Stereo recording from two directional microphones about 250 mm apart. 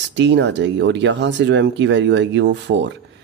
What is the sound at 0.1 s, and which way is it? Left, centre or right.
Speech, right.